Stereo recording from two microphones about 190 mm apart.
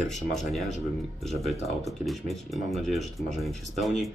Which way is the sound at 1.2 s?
Centre (ahead or behind).